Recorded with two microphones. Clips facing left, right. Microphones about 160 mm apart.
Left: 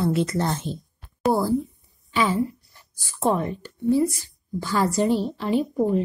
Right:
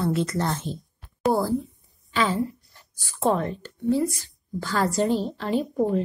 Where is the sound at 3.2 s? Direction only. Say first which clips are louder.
Even; 10° left (ahead or behind).